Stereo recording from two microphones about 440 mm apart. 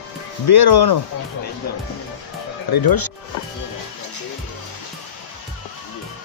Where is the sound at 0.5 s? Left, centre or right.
Left.